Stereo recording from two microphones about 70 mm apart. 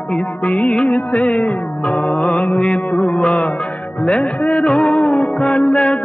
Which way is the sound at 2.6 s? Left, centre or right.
Left.